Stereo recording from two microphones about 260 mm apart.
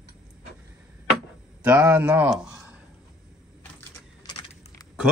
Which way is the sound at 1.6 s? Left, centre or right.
Centre.